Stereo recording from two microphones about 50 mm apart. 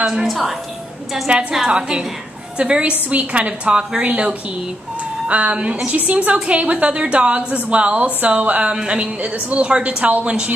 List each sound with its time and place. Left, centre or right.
0.0 s a woman's voice: centre
0.3 s a woman's voice: centre
1.3 s a woman's voice: right